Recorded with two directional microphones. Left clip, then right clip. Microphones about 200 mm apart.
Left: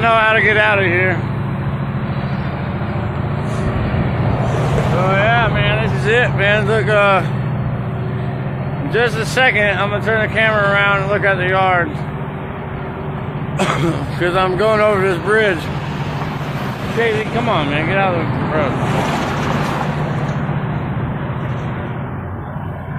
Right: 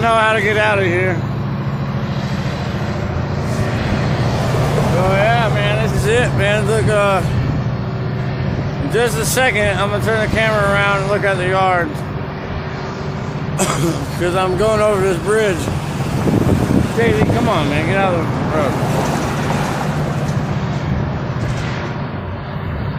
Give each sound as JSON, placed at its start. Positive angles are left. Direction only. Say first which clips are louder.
{"t": 0.0, "sound": "speech", "louder": "left 1 dB", "side_deg": -20}
{"t": 5.1, "sound": "speech", "louder": "left 2 dB", "side_deg": -25}
{"t": 8.9, "sound": "speech", "louder": "left 1 dB", "side_deg": -20}
{"t": 13.6, "sound": "speech", "louder": "left 1 dB", "side_deg": -10}
{"t": 17.0, "sound": "speech", "louder": "even", "side_deg": -25}